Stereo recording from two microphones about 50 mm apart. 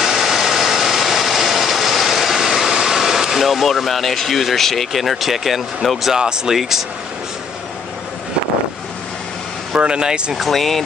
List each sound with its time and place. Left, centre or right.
0.0 s vehicle: centre
6.1 s speech: centre
9.8 s speech: centre
10.3 s speech: centre